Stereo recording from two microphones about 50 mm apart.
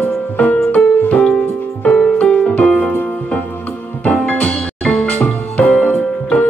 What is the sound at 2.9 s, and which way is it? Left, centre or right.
Music, left.